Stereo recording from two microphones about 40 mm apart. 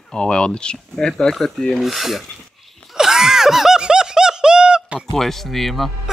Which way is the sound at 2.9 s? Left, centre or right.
Centre.